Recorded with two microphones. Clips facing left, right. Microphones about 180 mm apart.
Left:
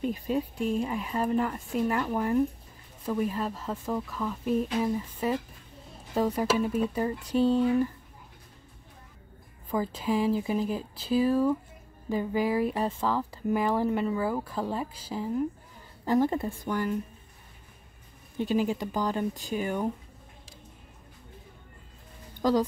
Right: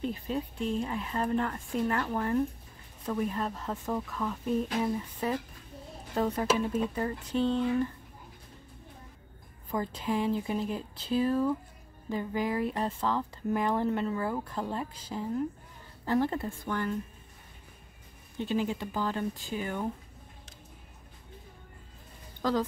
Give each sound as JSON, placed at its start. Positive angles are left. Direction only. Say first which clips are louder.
{"t": 0.0, "sound": "speech", "louder": "left 4 dB", "side_deg": 10}
{"t": 6.1, "sound": "speech", "louder": "left 2 dB", "side_deg": 10}
{"t": 9.7, "sound": "speech", "louder": "left 3 dB", "side_deg": 5}
{"t": 18.4, "sound": "speech", "louder": "left 4 dB", "side_deg": 10}
{"t": 22.4, "sound": "speech", "louder": "left 4 dB", "side_deg": 15}